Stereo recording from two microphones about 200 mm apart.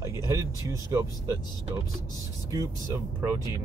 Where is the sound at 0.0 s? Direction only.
15° right (ahead or behind).